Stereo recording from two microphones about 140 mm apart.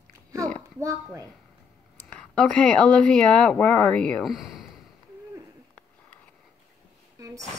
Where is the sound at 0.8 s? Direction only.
25° right (ahead or behind).